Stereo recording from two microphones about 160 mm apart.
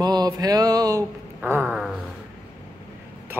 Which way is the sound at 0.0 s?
25° right (ahead or behind).